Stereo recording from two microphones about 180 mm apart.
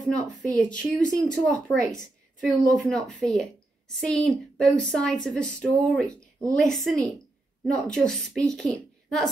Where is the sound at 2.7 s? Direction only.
5° left (ahead or behind).